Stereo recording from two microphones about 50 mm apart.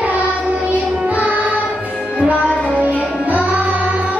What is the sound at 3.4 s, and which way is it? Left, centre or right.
Music, right.